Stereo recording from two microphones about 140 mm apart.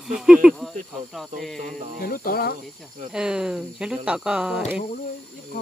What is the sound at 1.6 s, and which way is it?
Speech, 65° right (ahead or behind).